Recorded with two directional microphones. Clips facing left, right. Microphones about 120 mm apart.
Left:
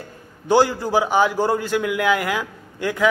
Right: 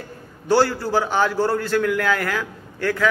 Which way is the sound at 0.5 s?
15° left (ahead or behind).